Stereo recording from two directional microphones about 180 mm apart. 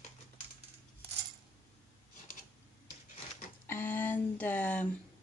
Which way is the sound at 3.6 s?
10° left (ahead or behind).